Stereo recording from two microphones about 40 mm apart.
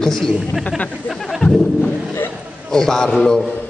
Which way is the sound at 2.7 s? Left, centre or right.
Centre.